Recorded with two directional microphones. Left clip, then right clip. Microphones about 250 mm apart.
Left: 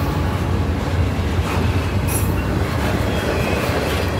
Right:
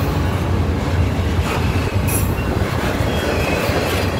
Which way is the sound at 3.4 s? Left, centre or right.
Right.